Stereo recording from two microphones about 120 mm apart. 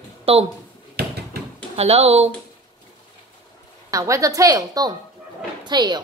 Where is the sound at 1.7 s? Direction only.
60° right (ahead or behind).